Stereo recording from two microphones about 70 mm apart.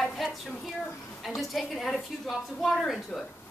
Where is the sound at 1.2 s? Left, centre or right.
Centre.